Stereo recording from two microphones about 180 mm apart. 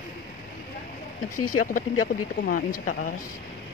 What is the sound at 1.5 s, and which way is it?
Speech, 50° left (ahead or behind).